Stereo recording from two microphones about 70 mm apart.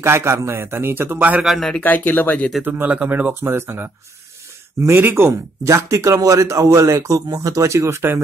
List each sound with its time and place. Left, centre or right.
0.0 s a man's voice: right
1.4 s speech: centre
1.8 s speech: left
2.6 s a man's voice: right